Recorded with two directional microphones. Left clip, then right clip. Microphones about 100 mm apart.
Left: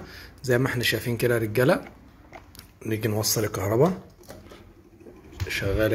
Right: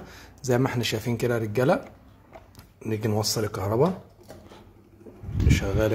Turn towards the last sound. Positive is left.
turn(degrees=-45)  # may be behind; listen again after turning